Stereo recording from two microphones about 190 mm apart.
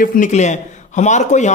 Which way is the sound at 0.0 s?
45° left (ahead or behind).